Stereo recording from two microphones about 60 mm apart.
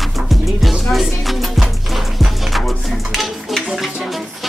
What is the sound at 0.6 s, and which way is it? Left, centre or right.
Music, centre.